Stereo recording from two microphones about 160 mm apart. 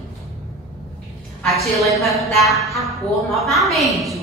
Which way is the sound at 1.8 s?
Centre (ahead or behind).